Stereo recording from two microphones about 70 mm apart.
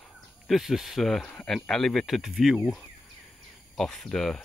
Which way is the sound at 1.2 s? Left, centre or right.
Centre.